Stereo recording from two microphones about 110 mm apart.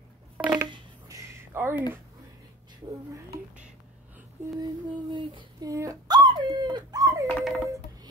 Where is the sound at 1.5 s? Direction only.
20° right (ahead or behind).